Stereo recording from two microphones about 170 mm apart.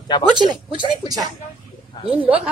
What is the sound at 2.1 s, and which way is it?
Speech, 10° right (ahead or behind).